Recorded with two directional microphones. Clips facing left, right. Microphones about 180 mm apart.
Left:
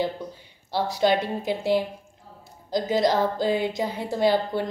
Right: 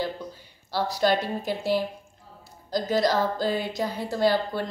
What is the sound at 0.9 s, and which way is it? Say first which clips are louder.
A woman's voice: left 2 dB; 20° left (ahead or behind).